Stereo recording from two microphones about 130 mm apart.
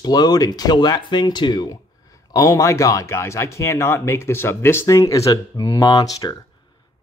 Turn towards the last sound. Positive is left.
turn(degrees=30)  # may be behind; listen again after turning